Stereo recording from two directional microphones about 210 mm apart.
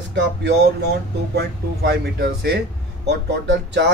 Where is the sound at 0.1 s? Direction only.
55° right (ahead or behind).